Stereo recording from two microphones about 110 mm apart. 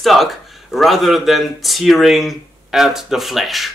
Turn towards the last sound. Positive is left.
turn(degrees=0)  # may be behind; listen again after turning